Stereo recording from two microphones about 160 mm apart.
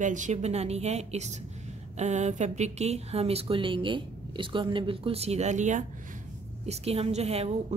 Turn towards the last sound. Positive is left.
turn(degrees=-40)  # may be behind; listen again after turning